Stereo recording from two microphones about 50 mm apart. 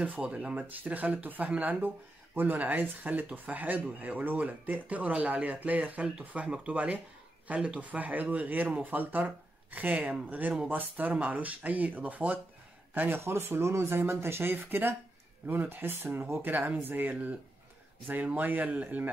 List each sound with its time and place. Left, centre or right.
0.0 s speech: right
0.6 s speech: right
13.2 s speech: right
16.3 s speech: right